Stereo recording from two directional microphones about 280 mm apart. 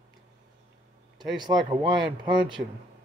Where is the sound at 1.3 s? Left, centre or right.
Centre.